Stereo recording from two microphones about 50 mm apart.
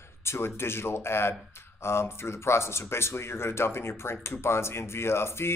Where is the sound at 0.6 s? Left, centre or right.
Left.